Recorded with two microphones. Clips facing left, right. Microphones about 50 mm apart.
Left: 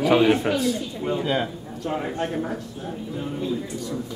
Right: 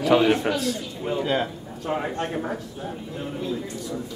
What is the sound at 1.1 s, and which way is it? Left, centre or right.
A man's voice, centre.